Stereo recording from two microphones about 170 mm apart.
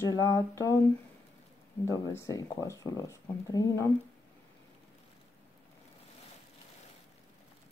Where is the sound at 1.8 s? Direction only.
15° left (ahead or behind).